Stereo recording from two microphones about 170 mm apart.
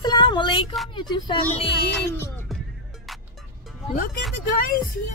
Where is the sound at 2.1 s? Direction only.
15° left (ahead or behind).